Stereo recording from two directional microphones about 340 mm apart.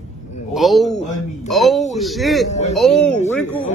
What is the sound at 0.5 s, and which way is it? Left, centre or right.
Speech, centre.